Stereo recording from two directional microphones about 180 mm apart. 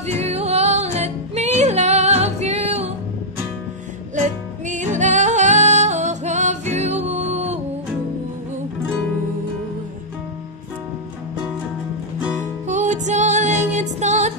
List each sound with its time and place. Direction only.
0.0 s music: 35° right (ahead or behind)
4.6 s music: 45° right (ahead or behind)
12.6 s music: 40° right (ahead or behind)